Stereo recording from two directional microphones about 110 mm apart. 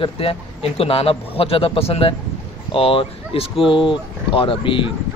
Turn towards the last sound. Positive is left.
turn(degrees=50)  # may be behind; listen again after turning